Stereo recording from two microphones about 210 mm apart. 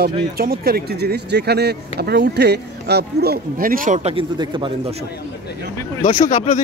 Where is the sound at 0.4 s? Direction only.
45° right (ahead or behind); by 4.9 s 25° right (ahead or behind).